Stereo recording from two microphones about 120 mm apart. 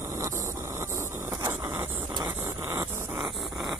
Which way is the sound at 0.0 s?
25° right (ahead or behind).